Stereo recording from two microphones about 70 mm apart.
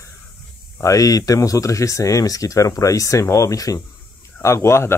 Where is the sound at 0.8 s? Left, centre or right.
Left.